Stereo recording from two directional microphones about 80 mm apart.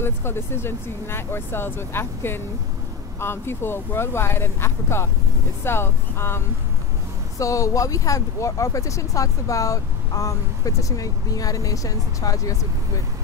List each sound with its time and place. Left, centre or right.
0.0 s speech: left
7.3 s speech: left